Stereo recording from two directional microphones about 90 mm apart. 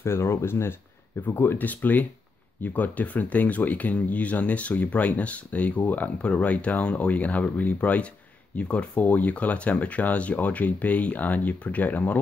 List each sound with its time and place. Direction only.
0.0 s speech: 30° left (ahead or behind)